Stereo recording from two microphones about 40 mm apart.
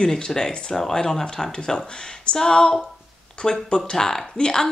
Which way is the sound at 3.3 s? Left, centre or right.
Centre.